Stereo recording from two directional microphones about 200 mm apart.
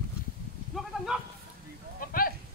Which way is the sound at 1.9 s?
45° left (ahead or behind).